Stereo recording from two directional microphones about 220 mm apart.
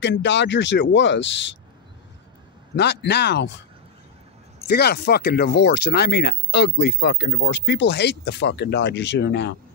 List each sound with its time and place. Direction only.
0.0 s speech: 55° left (ahead or behind)
2.7 s speech: 50° left (ahead or behind)
4.6 s speech: 45° left (ahead or behind)